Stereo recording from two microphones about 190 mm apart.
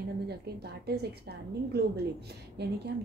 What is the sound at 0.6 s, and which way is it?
A woman's voice, 55° right (ahead or behind).